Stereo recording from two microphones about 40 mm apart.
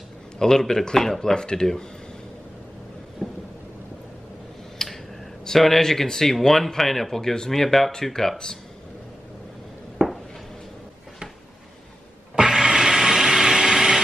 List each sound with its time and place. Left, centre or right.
0.4 s speech: centre
1.3 s speech: centre
3.2 s thunder: centre
4.8 s tick-tock: centre
5.4 s speech: centre
10.0 s a sound: centre
12.4 s a sound: centre